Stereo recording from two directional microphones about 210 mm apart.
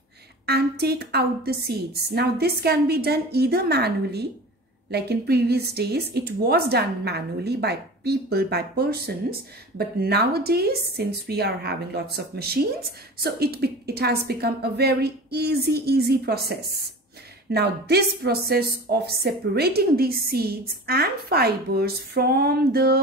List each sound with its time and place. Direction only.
0.5 s a woman's voice: 50° right (ahead or behind)